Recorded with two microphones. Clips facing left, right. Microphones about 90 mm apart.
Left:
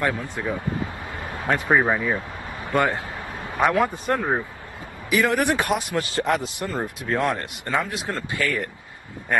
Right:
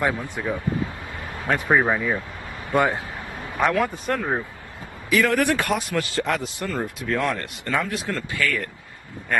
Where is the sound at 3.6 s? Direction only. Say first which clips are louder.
Left 1 dB; 20° left (ahead or behind).